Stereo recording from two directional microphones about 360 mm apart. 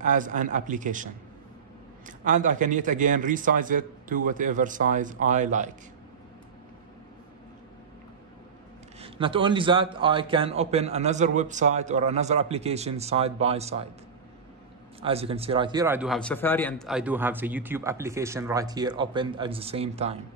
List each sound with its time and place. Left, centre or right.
0.0 s a man's voice: right
9.0 s a man's voice: centre
15.0 s a man's voice: centre